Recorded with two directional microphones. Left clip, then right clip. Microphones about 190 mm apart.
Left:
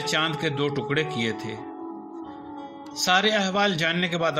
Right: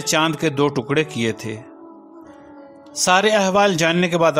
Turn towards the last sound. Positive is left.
turn(degrees=-40)  # may be behind; listen again after turning